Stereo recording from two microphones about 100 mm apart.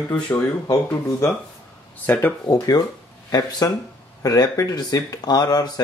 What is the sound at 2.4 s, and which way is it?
Speech, 40° left (ahead or behind).